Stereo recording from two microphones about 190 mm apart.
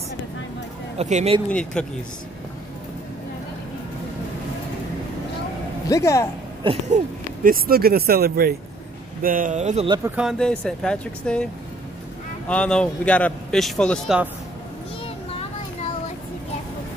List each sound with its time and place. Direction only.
0.9 s speech: 35° right (ahead or behind)
1.5 s a man's voice: 5° left (ahead or behind)
5.9 s speech: 15° left (ahead or behind)
6.6 s speech: 30° right (ahead or behind)
7.4 s speech: 50° right (ahead or behind)
10.1 s a man's voice: centre (ahead or behind)
12.4 s a man's voice: 5° left (ahead or behind)